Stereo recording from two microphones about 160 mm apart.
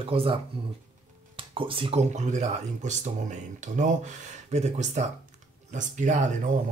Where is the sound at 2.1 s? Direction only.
45° right (ahead or behind).